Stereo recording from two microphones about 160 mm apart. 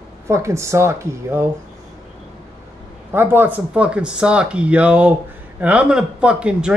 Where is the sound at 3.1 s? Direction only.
10° right (ahead or behind).